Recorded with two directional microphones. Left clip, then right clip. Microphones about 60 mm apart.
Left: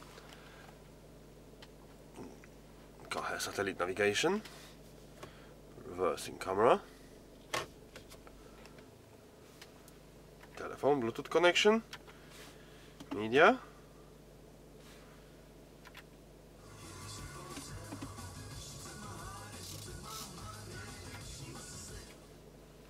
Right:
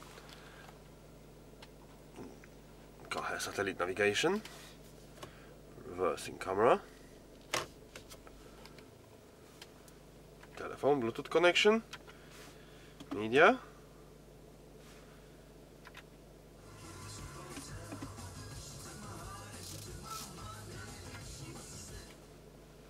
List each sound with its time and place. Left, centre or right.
3.1 s speech: centre
5.9 s speech: centre
7.5 s typewriter: right
10.5 s speech: centre
13.1 s speech: centre
17.4 s music: left